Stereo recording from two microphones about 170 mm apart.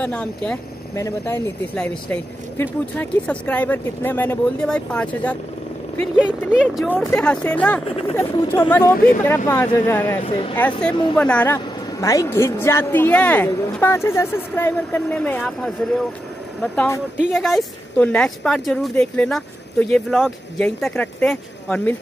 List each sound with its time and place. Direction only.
0.0 s a woman's voice: 10° left (ahead or behind)
6.5 s speech: 5° right (ahead or behind)
7.1 s a woman's voice: 10° left (ahead or behind)
10.2 s speech: 35° left (ahead or behind)
11.1 s a woman's voice: 10° left (ahead or behind)
17.3 s speech: centre (ahead or behind)
20.9 s a woman's voice: 10° left (ahead or behind)